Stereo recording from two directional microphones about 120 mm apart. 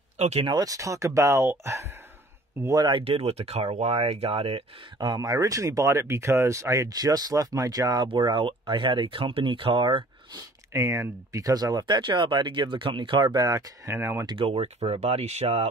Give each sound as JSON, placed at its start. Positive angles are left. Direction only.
{"t": 0.2, "sound": "speech", "side_deg": -65}
{"t": 0.5, "sound": "speech", "side_deg": -30}
{"t": 2.8, "sound": "speech", "side_deg": -45}
{"t": 4.9, "sound": "speech", "side_deg": -35}
{"t": 10.7, "sound": "speech", "side_deg": -25}
{"t": 13.9, "sound": "speech", "side_deg": -20}
{"t": 14.2, "sound": "speech", "side_deg": -45}